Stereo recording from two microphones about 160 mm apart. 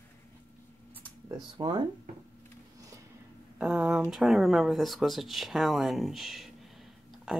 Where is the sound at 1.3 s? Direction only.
25° right (ahead or behind).